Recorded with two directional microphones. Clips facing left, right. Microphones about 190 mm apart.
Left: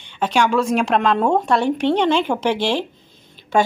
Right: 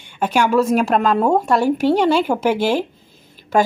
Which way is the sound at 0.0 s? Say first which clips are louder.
Right 1 dB; 10° right (ahead or behind).